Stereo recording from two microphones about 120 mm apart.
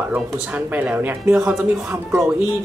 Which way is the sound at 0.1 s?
10° right (ahead or behind).